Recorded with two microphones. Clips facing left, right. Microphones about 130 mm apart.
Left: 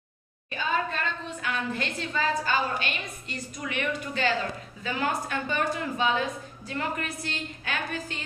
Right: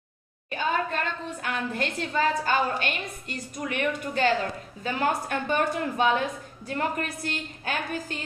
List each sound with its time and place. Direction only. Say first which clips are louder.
0.5 s a woman's voice: right 2 dB; 55° right (ahead or behind)